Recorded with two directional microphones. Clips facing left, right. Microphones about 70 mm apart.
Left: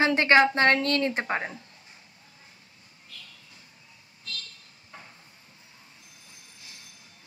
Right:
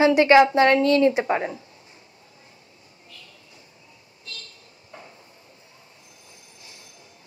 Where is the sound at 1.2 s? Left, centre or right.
Left.